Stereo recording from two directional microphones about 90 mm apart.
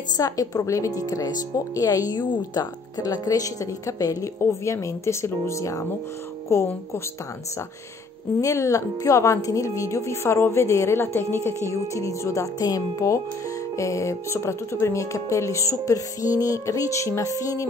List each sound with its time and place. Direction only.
0.2 s speech: 40° left (ahead or behind)
8.4 s speech: 35° left (ahead or behind)